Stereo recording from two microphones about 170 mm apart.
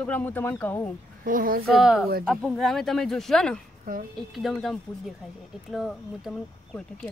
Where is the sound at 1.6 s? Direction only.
Centre (ahead or behind).